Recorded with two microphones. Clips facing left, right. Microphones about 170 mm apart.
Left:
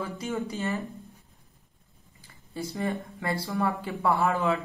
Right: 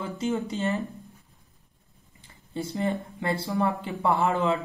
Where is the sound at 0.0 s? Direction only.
20° right (ahead or behind).